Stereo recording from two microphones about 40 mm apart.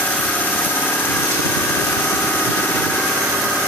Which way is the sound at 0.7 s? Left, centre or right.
Left.